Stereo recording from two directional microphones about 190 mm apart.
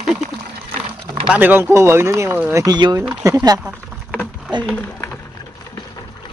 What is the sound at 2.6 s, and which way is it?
Speech, 20° right (ahead or behind).